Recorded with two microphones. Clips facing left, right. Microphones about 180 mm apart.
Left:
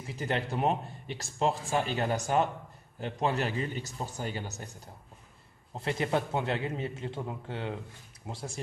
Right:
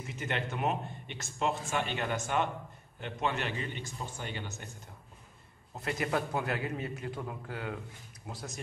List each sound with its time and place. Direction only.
0.0 s speech: 35° left (ahead or behind)
5.8 s a man's voice: 30° left (ahead or behind)